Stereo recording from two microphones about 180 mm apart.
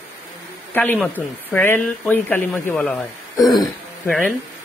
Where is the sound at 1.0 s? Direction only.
10° left (ahead or behind).